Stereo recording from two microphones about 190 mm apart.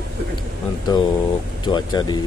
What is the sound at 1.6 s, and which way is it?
Speech, 25° left (ahead or behind).